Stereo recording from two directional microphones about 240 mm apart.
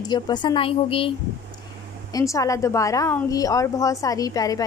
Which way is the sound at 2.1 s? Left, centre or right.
Centre.